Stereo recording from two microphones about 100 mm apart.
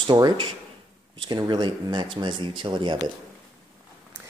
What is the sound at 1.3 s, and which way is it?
Speech, 45° right (ahead or behind).